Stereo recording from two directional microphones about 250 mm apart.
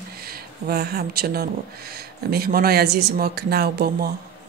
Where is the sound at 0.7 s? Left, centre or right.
Right.